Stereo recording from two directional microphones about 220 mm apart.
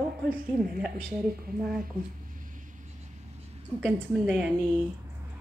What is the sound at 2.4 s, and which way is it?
Vehicle, 35° right (ahead or behind).